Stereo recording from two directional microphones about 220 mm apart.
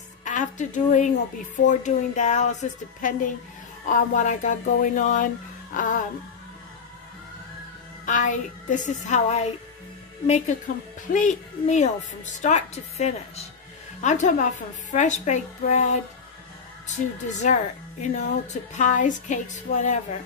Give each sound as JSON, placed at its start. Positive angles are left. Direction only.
{"t": 0.2, "sound": "a woman's voice", "side_deg": 35}
{"t": 8.0, "sound": "speech", "side_deg": 35}
{"t": 17.4, "sound": "speech", "side_deg": 35}